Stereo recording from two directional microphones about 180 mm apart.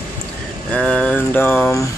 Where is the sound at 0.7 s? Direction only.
5° left (ahead or behind).